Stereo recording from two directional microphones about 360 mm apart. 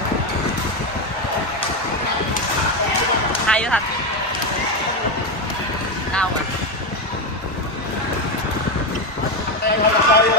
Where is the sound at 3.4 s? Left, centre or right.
Centre.